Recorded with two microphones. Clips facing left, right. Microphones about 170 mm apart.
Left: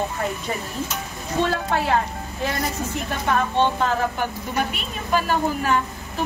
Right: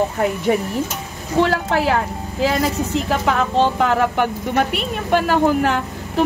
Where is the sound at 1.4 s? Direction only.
90° right.